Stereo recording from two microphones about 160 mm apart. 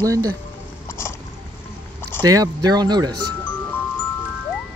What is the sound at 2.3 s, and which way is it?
Speech, 25° right (ahead or behind).